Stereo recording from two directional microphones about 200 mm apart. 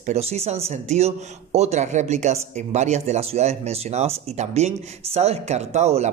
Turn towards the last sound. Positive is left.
turn(degrees=-35)  # may be behind; listen again after turning